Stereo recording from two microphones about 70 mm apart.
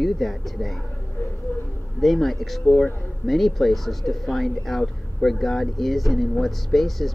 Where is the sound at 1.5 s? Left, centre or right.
Left.